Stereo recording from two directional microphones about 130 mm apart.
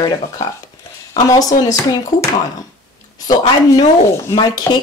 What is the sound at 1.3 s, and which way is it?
Speech, 30° left (ahead or behind).